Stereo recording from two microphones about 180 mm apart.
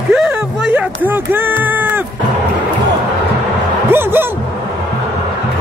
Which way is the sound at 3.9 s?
10° right (ahead or behind).